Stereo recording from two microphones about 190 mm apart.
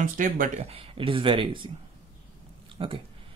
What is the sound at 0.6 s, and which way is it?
Speech, 30° right (ahead or behind).